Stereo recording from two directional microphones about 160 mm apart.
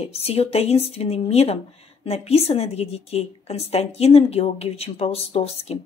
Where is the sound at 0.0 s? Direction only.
40° left (ahead or behind).